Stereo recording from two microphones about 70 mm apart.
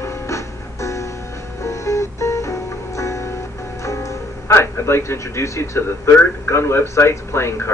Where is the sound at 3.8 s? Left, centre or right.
Left.